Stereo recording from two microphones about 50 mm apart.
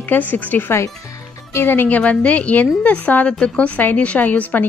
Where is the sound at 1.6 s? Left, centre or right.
Left.